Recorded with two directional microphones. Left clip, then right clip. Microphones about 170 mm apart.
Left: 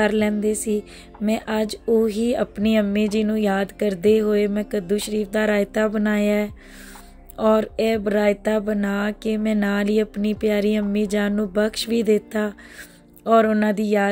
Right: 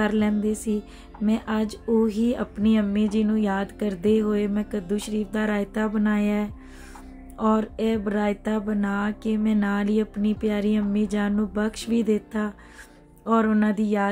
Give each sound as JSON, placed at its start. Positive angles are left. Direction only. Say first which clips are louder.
{"t": 0.0, "sound": "speech", "louder": "left 5 dB", "side_deg": 15}